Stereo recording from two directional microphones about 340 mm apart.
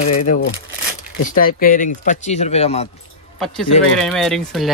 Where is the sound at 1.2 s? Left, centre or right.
Left.